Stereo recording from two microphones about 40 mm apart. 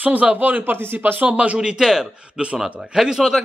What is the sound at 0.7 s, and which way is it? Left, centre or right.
Speech, right.